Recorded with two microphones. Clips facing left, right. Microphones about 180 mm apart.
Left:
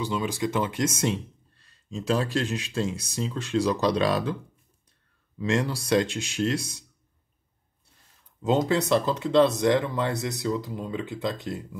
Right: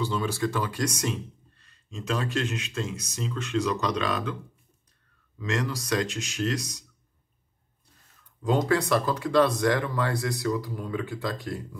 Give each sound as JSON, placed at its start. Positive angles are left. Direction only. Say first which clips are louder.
{"t": 0.0, "sound": "speech", "louder": "even", "side_deg": 15}
{"t": 5.4, "sound": "speech", "louder": "left 4 dB", "side_deg": 30}
{"t": 8.4, "sound": "speech", "louder": "left 1 dB", "side_deg": 20}